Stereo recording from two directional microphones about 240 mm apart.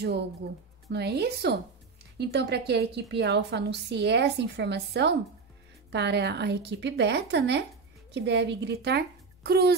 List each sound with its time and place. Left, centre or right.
0.0 s a woman's voice: right